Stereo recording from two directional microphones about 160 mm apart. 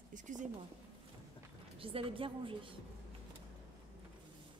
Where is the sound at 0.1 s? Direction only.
50° right (ahead or behind).